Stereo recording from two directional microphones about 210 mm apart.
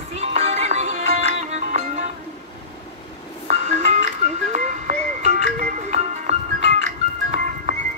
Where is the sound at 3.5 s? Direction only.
30° right (ahead or behind).